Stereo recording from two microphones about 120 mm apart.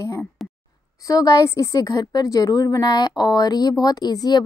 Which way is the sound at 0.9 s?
30° left (ahead or behind).